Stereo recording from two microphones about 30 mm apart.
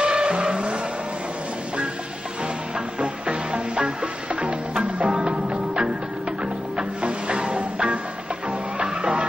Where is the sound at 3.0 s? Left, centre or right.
Right.